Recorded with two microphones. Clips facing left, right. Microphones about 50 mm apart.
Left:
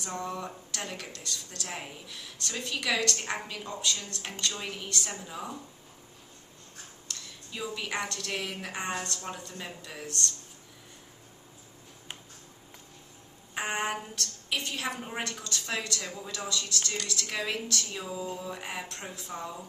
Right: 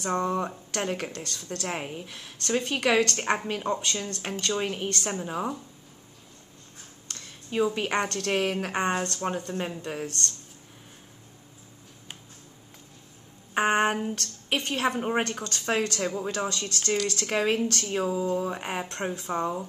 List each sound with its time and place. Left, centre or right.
0.0 s speech: right
7.1 s speech: right
13.6 s a sound: right
14.1 s speech: right